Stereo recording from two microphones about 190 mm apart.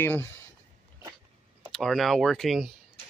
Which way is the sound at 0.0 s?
10° left (ahead or behind).